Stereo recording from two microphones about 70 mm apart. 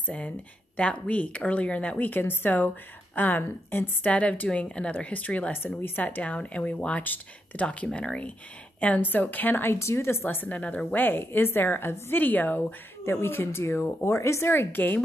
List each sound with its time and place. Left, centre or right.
0.7 s speech: centre
9.8 s speech: left